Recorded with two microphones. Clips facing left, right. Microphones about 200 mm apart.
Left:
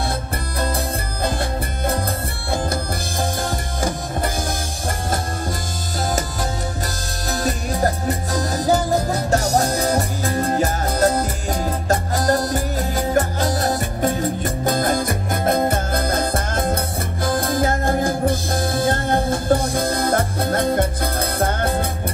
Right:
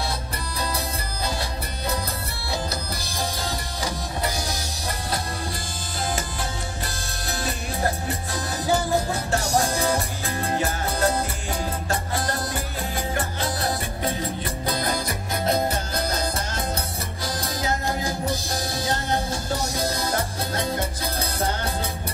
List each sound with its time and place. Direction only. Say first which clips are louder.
0.6 s music: left 6 dB; 50° left (ahead or behind)
7.2 s music: left 7 dB; 40° left (ahead or behind)